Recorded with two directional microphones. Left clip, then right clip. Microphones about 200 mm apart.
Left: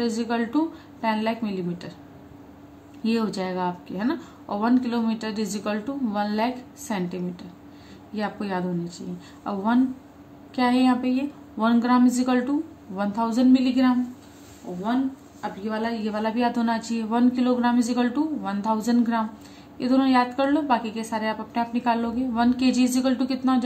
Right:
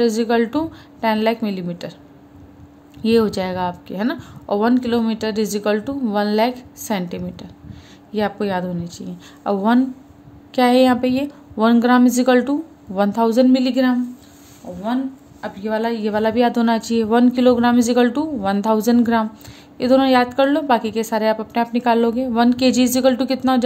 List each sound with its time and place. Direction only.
0.0 s speech: 50° right (ahead or behind)
3.0 s speech: 45° right (ahead or behind)
15.4 s speech: 45° right (ahead or behind)